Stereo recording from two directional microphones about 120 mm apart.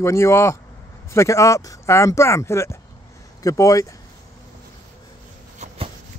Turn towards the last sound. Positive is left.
turn(degrees=-70)  # may be behind; listen again after turning